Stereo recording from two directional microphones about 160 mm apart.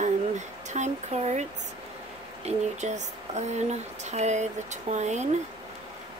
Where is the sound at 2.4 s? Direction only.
45° right (ahead or behind).